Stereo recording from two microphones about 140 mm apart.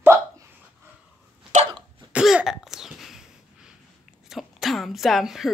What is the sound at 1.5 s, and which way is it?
Sneeze, 60° right (ahead or behind).